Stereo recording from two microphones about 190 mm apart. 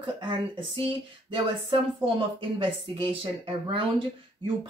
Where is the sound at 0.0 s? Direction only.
25° right (ahead or behind).